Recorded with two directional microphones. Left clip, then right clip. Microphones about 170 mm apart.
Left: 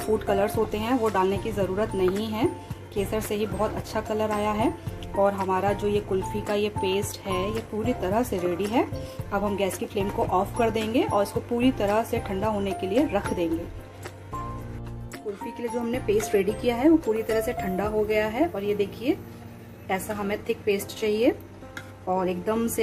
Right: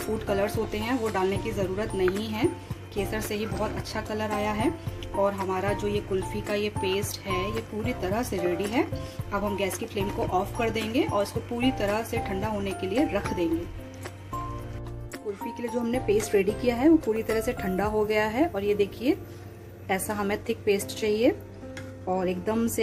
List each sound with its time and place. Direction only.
0.0 s speech: 5° left (ahead or behind)
15.7 s a woman's voice: 10° right (ahead or behind)